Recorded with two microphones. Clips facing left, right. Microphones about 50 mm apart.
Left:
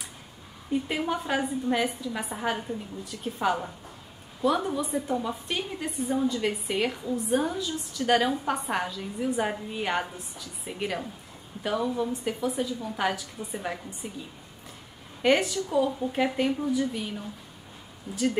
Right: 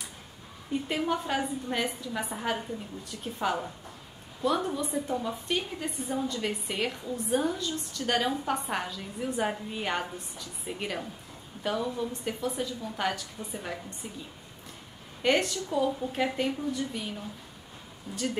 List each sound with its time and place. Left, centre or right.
0.8 s a woman's voice: centre
15.2 s a woman's voice: centre